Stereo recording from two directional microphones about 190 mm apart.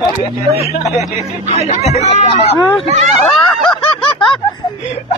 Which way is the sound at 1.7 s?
35° left (ahead or behind).